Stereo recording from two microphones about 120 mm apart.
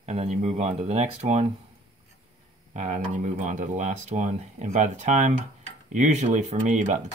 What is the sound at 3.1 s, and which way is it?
Speech, 90° right.